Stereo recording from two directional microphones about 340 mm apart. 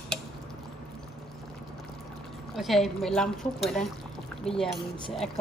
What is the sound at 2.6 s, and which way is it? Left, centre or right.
Speech, centre.